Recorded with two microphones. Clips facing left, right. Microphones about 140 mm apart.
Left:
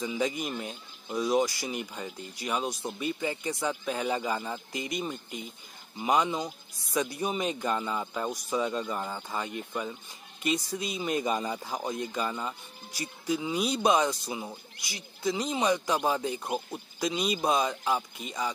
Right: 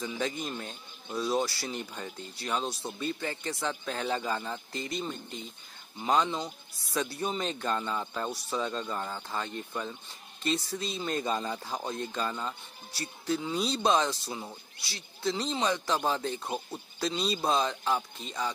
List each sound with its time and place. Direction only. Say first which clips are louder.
0.0 s speech: left 3 dB; 15° left (ahead or behind)